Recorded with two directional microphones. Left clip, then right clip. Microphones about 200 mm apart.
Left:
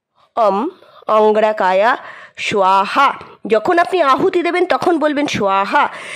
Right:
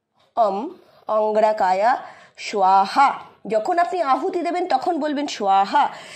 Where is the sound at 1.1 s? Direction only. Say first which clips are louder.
Left 7 dB; 40° left (ahead or behind).